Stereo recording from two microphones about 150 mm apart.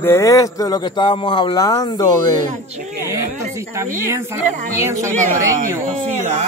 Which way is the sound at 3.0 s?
20° right (ahead or behind).